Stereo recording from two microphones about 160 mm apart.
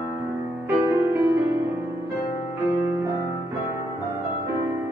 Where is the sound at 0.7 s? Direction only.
15° right (ahead or behind).